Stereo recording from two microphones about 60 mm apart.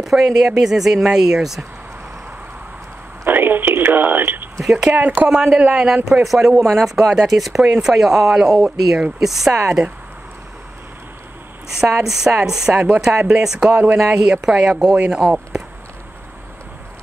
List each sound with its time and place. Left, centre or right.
0.0 s speech: centre
3.3 s a sound: right
4.8 s speech: right
6.2 s speech: centre
7.0 s speech: centre
9.7 s speech: centre
12.0 s speech: centre